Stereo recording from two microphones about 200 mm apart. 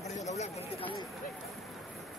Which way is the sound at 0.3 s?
35° left (ahead or behind).